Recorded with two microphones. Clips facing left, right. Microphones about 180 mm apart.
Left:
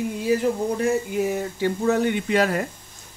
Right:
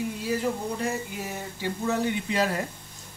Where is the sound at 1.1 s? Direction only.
55° left (ahead or behind).